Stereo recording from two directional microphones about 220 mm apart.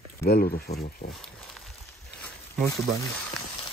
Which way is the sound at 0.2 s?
45° left (ahead or behind).